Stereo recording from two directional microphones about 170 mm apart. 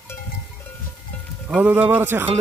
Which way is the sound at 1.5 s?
10° right (ahead or behind).